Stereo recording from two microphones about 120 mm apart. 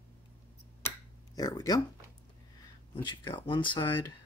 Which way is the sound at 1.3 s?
30° left (ahead or behind).